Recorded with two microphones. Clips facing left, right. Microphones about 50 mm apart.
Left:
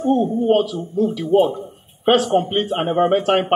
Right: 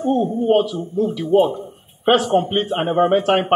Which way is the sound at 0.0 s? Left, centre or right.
Centre.